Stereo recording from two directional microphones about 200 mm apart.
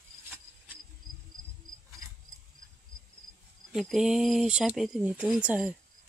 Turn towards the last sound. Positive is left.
turn(degrees=-5)  # may be behind; listen again after turning